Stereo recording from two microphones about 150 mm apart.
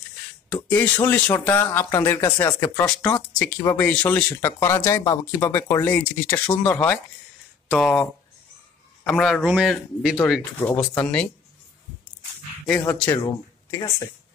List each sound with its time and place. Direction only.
0.7 s a man's voice: 15° left (ahead or behind); by 10.1 s centre (ahead or behind)
11.0 s speech: 10° left (ahead or behind)
12.8 s speech: 20° left (ahead or behind)